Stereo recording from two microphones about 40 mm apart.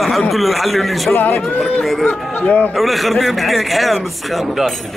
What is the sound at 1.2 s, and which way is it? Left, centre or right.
Speech, left.